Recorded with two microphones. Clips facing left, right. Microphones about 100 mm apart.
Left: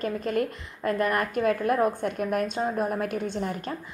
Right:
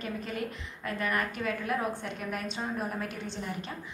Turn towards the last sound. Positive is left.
turn(degrees=50)  # may be behind; listen again after turning